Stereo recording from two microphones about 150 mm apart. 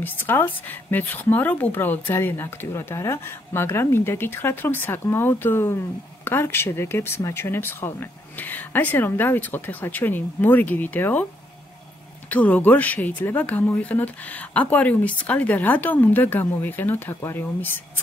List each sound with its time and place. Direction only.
0.0 s speech: 15° left (ahead or behind)
12.3 s speech: 10° left (ahead or behind)